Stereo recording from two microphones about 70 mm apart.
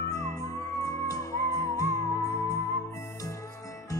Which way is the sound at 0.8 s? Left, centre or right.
Left.